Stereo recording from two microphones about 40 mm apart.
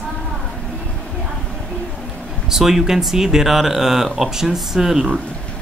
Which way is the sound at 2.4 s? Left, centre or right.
Centre.